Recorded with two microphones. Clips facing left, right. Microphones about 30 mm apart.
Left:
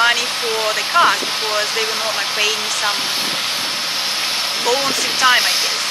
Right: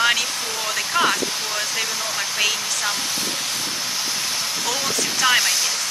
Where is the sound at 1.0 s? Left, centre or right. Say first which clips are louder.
Left 6 dB; left.